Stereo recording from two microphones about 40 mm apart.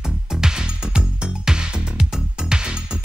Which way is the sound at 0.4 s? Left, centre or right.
Centre.